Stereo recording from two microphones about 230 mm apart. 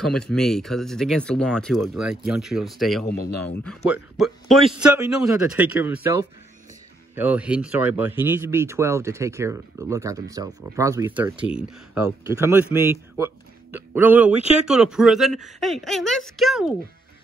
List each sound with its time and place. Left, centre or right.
0.0 s speech: centre
3.3 s speech: left
3.6 s speech: centre
7.2 s speech: centre